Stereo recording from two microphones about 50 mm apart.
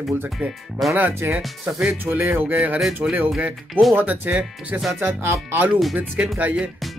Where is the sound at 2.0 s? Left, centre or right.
Right.